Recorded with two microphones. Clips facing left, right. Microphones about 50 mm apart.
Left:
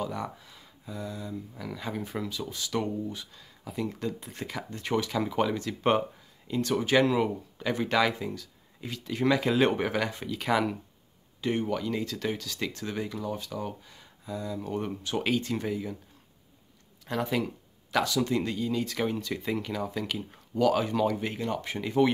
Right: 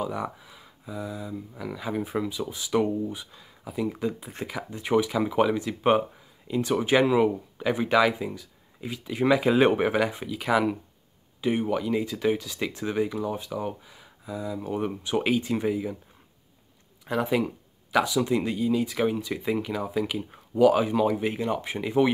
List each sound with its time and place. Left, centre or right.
0.0 s speech: centre
17.0 s speech: centre